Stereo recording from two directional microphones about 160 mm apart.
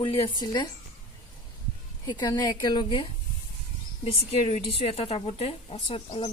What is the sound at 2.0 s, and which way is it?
A woman's voice, 25° left (ahead or behind).